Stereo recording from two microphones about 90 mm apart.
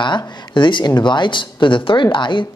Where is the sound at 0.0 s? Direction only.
60° left (ahead or behind).